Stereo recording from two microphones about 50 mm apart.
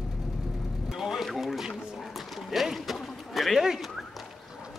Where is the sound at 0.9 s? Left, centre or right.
Centre.